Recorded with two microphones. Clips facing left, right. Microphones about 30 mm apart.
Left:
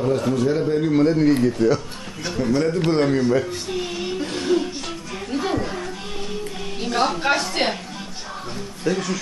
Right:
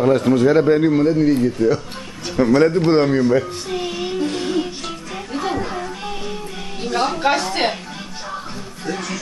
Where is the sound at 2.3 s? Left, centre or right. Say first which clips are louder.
Right 7 dB; right.